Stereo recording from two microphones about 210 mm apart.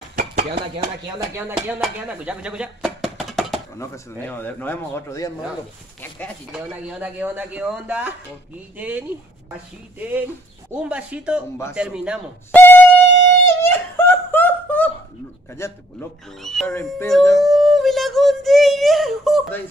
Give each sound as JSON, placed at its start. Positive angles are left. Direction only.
{"t": 0.1, "sound": "a sound", "side_deg": -40}
{"t": 1.3, "sound": "speech", "side_deg": -10}
{"t": 3.7, "sound": "speech", "side_deg": 15}
{"t": 6.5, "sound": "speech", "side_deg": -5}
{"t": 12.5, "sound": "music", "side_deg": 10}
{"t": 13.5, "sound": "a sound", "side_deg": 10}
{"t": 15.6, "sound": "speech", "side_deg": 15}